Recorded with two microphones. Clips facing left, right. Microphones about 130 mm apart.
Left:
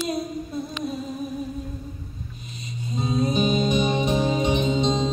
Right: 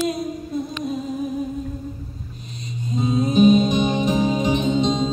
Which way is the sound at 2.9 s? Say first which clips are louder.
Right 5 dB; centre (ahead or behind).